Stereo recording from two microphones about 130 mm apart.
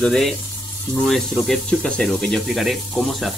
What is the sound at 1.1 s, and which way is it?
Speech, centre (ahead or behind).